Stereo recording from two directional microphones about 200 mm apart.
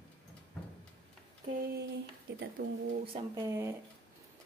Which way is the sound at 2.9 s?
30° right (ahead or behind).